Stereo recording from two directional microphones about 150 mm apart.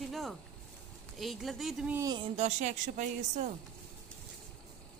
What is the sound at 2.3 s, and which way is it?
A woman's voice, 50° right (ahead or behind).